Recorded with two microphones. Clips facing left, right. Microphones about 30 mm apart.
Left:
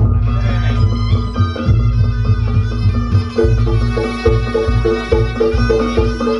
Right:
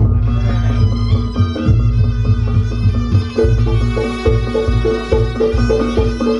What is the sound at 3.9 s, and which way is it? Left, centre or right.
Music, left.